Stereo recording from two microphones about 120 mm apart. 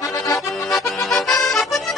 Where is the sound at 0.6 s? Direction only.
Centre (ahead or behind).